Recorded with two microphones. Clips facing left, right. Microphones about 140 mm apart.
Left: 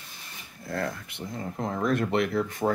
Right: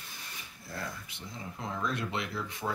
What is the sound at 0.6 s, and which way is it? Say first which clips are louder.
Speech: left 9 dB; 55° left (ahead or behind).